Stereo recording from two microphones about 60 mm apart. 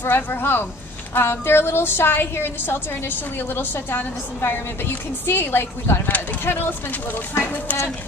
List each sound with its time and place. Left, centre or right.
0.0 s a woman's voice: left